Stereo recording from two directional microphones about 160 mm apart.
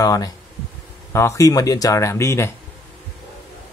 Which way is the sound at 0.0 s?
20° left (ahead or behind).